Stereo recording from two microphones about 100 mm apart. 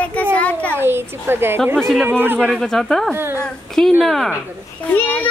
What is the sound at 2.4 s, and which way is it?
Speech, 5° left (ahead or behind).